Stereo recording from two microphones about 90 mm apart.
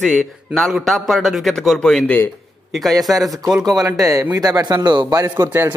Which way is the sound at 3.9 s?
35° right (ahead or behind).